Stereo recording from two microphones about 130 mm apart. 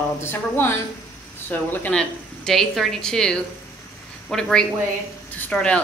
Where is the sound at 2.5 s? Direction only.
Centre (ahead or behind).